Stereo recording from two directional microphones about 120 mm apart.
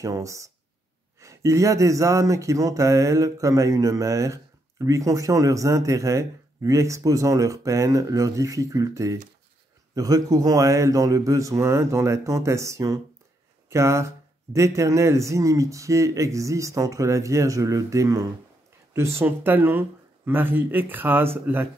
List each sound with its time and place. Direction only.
0.0 s speech: 25° right (ahead or behind)